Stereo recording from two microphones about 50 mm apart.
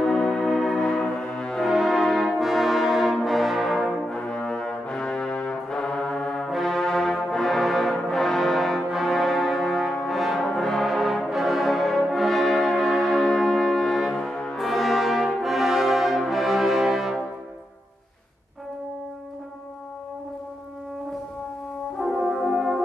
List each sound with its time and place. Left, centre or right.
0.0 s music: centre
1.6 s brass instrument: centre
4.3 s brass instrument: centre
6.5 s brass instrument: centre
14.6 s brass instrument: centre
22.0 s french horn: centre